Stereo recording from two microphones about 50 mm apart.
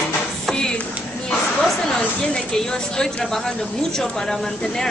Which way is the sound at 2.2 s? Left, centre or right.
Centre.